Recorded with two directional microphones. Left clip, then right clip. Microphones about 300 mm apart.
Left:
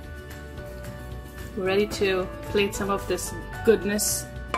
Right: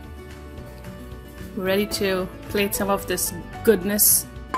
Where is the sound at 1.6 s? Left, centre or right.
Right.